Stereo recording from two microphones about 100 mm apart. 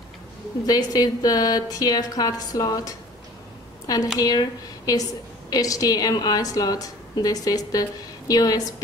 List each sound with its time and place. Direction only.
0.7 s a woman's voice: 40° left (ahead or behind)